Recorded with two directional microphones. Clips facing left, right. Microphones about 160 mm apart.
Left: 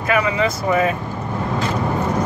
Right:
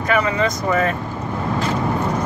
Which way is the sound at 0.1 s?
10° left (ahead or behind).